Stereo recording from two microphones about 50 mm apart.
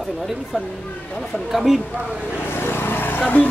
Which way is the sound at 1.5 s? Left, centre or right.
Centre.